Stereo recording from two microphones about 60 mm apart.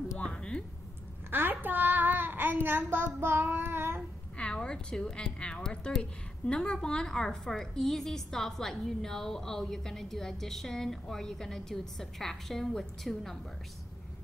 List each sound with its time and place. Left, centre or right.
0.2 s a sound: centre
1.3 s child singing: right
4.4 s a woman's voice: centre